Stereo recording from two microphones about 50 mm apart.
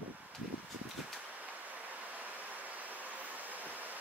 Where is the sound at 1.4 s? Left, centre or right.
Right.